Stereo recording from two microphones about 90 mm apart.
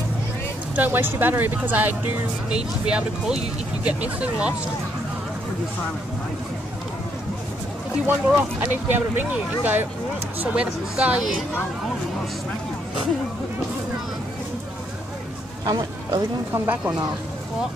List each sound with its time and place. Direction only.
0.7 s speech: 20° right (ahead or behind)
2.5 s speech: 10° right (ahead or behind)
8.1 s speech: 20° right (ahead or behind)
15.6 s speech: 45° right (ahead or behind)
16.5 s speech: 20° right (ahead or behind)